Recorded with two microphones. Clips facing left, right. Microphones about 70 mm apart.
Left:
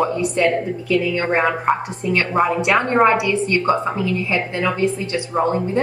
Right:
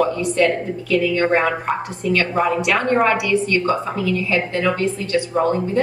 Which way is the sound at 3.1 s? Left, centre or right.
Left.